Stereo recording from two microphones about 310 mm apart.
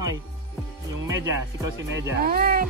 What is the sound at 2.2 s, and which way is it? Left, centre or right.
Speech, right.